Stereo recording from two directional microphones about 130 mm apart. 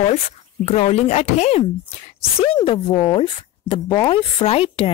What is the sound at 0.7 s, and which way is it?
Speech, 55° left (ahead or behind).